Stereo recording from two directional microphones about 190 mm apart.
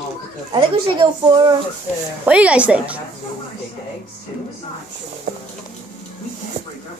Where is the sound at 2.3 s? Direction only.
5° right (ahead or behind).